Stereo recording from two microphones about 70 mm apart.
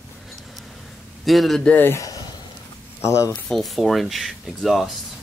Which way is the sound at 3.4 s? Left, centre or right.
Centre.